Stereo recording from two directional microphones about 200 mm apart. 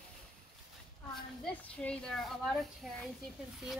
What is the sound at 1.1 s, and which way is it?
A woman's voice, 5° left (ahead or behind).